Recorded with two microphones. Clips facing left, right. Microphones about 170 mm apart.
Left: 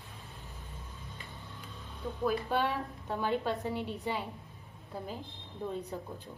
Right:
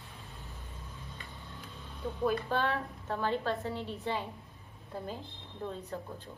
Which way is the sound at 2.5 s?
15° left (ahead or behind).